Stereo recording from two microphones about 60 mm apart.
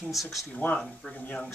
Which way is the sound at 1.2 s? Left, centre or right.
Left.